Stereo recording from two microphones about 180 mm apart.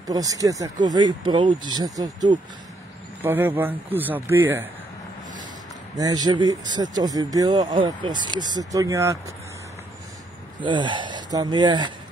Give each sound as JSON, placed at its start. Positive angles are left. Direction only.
{"t": 0.0, "sound": "speech", "side_deg": -20}
{"t": 3.2, "sound": "speech", "side_deg": -10}
{"t": 5.9, "sound": "speech", "side_deg": -20}
{"t": 10.6, "sound": "speech", "side_deg": -25}